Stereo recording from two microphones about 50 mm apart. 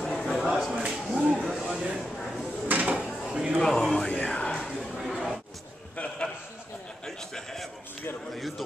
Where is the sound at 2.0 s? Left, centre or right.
Centre.